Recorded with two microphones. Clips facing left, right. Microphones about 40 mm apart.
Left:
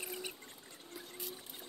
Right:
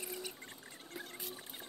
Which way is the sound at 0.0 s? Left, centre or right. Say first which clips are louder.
Left 1 dB; centre.